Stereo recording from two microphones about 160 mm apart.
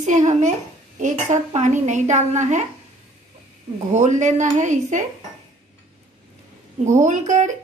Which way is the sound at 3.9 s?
50° right (ahead or behind).